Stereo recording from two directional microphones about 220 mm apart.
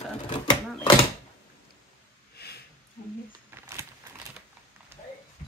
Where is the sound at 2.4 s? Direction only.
45° left (ahead or behind).